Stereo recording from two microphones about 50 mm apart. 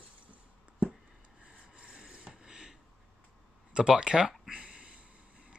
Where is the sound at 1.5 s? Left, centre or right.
Centre.